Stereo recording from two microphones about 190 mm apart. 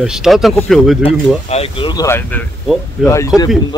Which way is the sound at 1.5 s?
30° left (ahead or behind).